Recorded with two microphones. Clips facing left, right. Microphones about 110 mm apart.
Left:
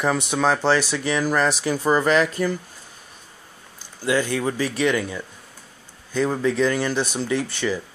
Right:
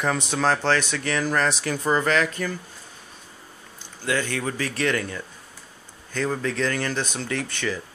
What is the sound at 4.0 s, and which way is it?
Speech, 10° left (ahead or behind).